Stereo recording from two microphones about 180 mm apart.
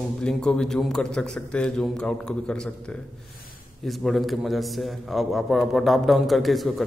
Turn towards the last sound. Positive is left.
turn(degrees=0)  # may be behind; listen again after turning